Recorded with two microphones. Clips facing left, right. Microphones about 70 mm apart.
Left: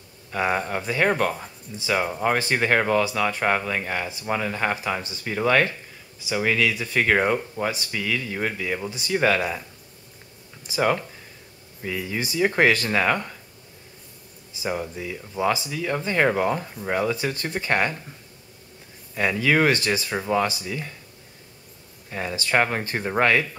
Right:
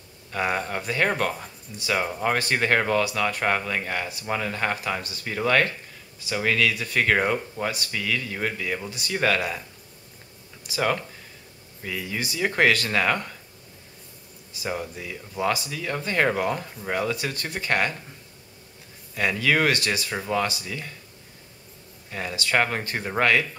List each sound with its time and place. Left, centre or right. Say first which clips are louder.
0.3 s speech: left 2 dB; centre
10.8 s speech: left 3 dB; centre
14.7 s speech: left 2 dB; centre
15.3 s speech: left 2 dB; centre
15.7 s speech: left 2 dB; centre
17.1 s speech: left 3 dB; left
19.1 s speech: left 2 dB; centre
20.1 s speech: left 3 dB; centre
22.1 s speech: left 2 dB; left
22.5 s speech: left 2 dB; centre